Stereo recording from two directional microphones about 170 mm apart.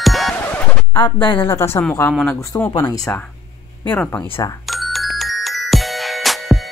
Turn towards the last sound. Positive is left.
turn(degrees=0)  # may be behind; listen again after turning